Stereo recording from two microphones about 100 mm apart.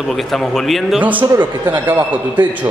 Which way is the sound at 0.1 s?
Centre (ahead or behind).